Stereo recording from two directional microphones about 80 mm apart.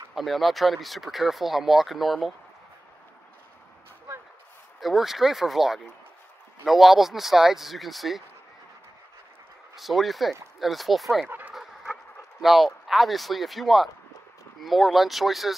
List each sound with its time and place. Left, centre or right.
0.1 s speech: centre
4.7 s speech: centre
9.8 s speech: centre
11.2 s dog: right
11.5 s a sound: centre
14.6 s speech: centre